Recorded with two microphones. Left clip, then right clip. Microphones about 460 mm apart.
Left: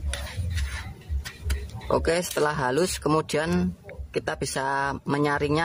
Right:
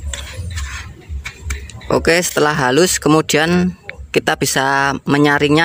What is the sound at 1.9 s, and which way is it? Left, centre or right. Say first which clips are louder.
Speech: right 10 dB; left.